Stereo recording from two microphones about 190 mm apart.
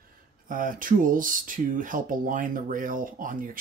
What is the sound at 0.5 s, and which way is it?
Speech, 45° right (ahead or behind).